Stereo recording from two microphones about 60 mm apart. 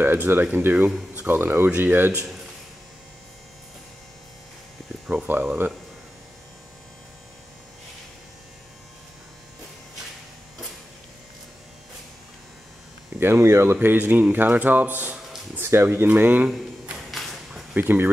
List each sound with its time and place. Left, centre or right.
0.0 s speech: right
5.1 s speech: right
13.2 s speech: right
13.7 s speech: right
15.5 s speech: right
16.1 s speech: right
16.4 s a sound: centre
17.7 s speech: right